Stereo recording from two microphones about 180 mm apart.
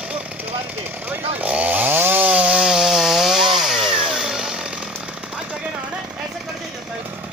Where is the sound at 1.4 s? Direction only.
10° right (ahead or behind).